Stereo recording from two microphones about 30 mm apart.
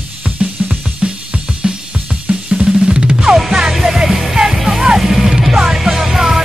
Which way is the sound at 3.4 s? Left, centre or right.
Centre.